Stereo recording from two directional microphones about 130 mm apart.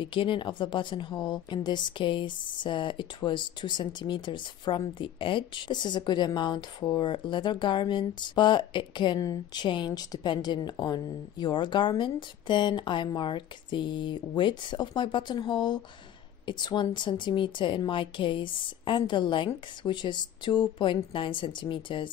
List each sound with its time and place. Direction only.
0.0 s a woman's voice: 40° left (ahead or behind)